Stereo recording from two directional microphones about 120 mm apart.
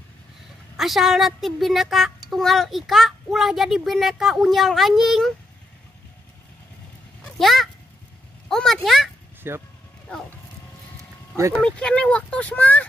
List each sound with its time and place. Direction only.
0.7 s a child's voice: centre (ahead or behind)
7.2 s a sound: centre (ahead or behind)
8.5 s a child's voice: centre (ahead or behind)
9.5 s speech: 20° right (ahead or behind)
11.5 s speech: 10° left (ahead or behind)